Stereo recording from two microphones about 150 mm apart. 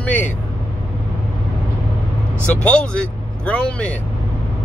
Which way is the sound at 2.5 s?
10° left (ahead or behind).